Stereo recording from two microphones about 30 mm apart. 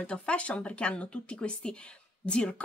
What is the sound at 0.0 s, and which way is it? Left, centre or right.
Speech, left.